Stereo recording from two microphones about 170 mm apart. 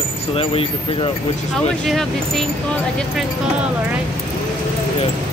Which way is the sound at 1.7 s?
Centre (ahead or behind).